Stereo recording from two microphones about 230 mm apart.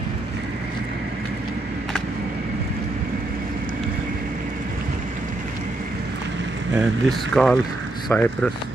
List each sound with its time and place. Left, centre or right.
6.7 s speech: centre